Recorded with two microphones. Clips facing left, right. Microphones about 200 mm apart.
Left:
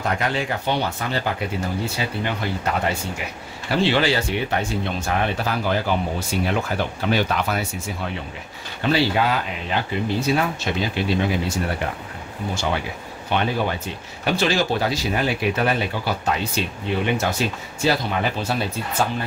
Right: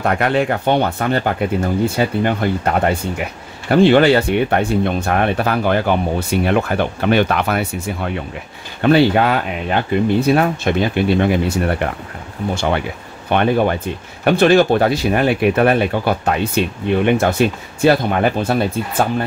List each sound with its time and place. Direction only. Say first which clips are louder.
0.0 s speech: right 7 dB; 60° right (ahead or behind)